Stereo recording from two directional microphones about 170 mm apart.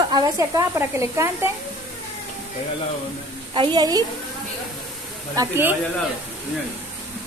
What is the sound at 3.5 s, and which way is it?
Speech, 25° right (ahead or behind).